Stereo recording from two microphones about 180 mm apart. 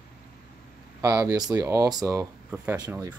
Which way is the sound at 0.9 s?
15° right (ahead or behind).